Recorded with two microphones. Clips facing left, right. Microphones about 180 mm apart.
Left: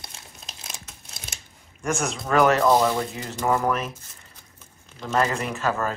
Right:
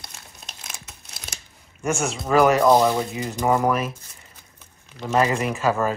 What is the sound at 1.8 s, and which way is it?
Speech, centre (ahead or behind).